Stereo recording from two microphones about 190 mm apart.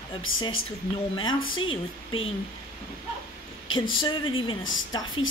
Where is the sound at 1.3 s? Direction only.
90° left.